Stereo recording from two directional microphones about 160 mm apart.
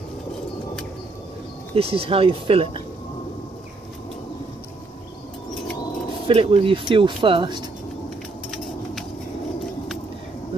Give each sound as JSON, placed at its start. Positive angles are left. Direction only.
{"t": 1.8, "sound": "speech", "side_deg": -35}
{"t": 6.2, "sound": "speech", "side_deg": -40}
{"t": 8.5, "sound": "a sound", "side_deg": 0}